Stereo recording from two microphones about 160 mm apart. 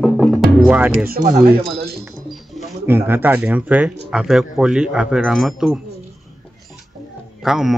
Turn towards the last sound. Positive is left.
turn(degrees=-5)  # may be behind; listen again after turning